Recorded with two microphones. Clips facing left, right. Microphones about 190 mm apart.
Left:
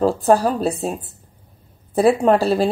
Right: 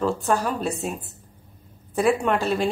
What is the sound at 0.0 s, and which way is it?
Speech, 35° left (ahead or behind).